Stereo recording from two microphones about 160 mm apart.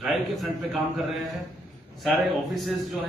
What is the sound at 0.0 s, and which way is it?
Speech, centre (ahead or behind).